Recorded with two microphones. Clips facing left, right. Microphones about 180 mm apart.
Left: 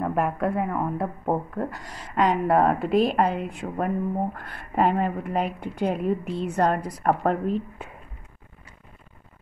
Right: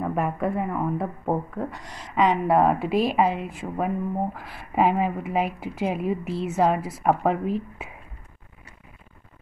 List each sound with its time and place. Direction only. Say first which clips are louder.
0.0 s speech: left 1 dB; centre (ahead or behind)